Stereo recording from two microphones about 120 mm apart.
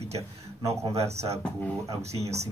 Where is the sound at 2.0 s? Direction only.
60° right (ahead or behind).